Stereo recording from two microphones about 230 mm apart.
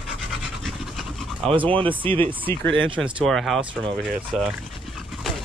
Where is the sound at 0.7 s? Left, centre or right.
Centre.